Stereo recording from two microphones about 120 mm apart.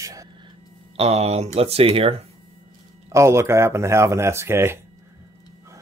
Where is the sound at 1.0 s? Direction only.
60° right (ahead or behind).